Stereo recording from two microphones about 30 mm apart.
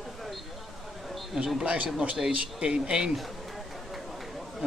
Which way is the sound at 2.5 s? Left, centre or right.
Right.